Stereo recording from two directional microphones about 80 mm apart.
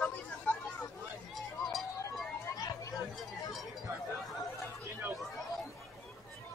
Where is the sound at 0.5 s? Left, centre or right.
Left.